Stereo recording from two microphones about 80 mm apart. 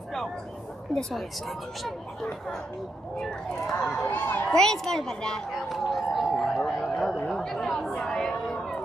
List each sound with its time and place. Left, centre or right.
3.8 s speech: centre
4.1 s a woman's voice: left
4.5 s a sound: centre
7.2 s speech: centre